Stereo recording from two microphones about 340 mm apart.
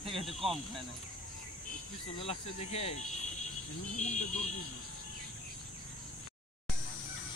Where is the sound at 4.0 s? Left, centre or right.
Left.